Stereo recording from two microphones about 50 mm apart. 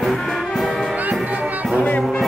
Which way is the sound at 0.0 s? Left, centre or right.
Centre.